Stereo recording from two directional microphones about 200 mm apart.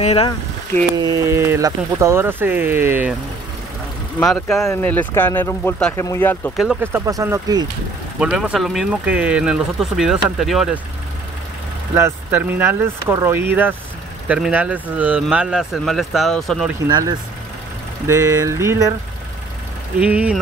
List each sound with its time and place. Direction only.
0.0 s speech: 30° left (ahead or behind)
0.9 s speech: 20° right (ahead or behind)
4.2 s speech: centre (ahead or behind)
6.5 s speech: centre (ahead or behind)
6.8 s speech: 15° right (ahead or behind)
8.2 s speech: 5° right (ahead or behind)
11.9 s speech: 10° right (ahead or behind)
16.8 s speech: 20° right (ahead or behind)
20.0 s speech: 5° right (ahead or behind)